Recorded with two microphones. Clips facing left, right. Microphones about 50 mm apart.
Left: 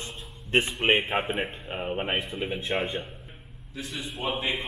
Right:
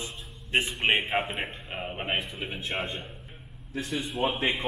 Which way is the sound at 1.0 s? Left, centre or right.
Centre.